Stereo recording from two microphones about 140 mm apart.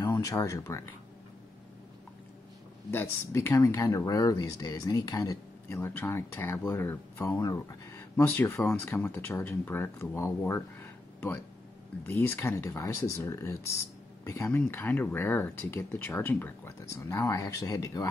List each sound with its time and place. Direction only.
0.0 s speech: 25° left (ahead or behind)
2.9 s speech: 15° left (ahead or behind)